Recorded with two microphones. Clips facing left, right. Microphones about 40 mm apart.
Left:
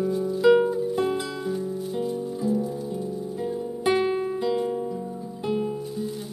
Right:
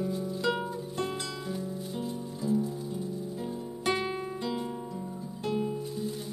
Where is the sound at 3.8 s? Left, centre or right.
Centre.